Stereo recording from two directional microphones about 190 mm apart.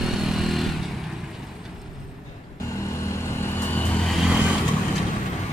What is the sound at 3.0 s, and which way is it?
Vehicle, 15° left (ahead or behind).